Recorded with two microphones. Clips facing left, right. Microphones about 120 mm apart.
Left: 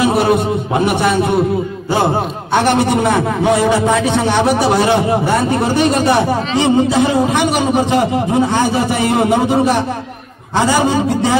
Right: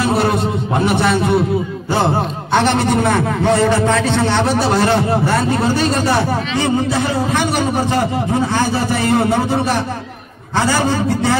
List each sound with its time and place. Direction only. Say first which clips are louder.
0.0 s a man's voice: left 3 dB; 15° left (ahead or behind)